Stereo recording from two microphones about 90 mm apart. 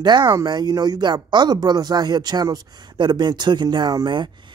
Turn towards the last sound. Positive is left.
turn(degrees=-55)  # may be behind; listen again after turning